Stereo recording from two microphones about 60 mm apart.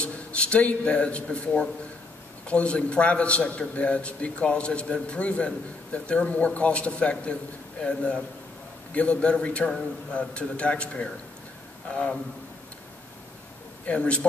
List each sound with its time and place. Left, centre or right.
0.0 s a man's voice: centre
13.8 s a man's voice: left